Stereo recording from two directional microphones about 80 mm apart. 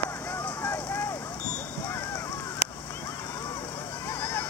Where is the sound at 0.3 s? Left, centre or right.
Left.